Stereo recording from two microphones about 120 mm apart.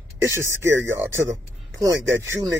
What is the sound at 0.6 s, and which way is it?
Speech, 20° right (ahead or behind).